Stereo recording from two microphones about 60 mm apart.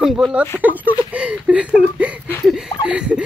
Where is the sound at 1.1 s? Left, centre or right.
Centre.